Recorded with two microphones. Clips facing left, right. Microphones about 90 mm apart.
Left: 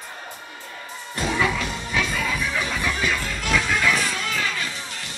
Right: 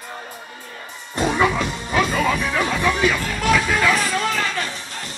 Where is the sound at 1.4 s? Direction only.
45° right (ahead or behind); by 3.2 s 65° right (ahead or behind).